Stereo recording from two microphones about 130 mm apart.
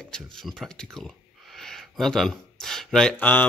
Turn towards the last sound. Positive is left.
turn(degrees=15)  # may be behind; listen again after turning